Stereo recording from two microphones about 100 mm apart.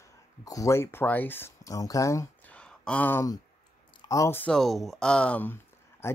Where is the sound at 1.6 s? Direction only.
35° left (ahead or behind).